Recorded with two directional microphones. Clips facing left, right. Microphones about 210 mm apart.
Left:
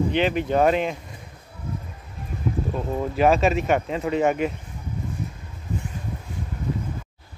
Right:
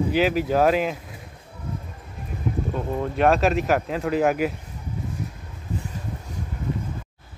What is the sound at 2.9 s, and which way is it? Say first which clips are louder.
Speech: left 1 dB; centre (ahead or behind).